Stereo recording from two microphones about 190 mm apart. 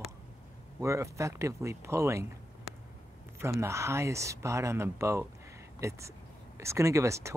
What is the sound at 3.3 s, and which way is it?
Speech, 15° right (ahead or behind).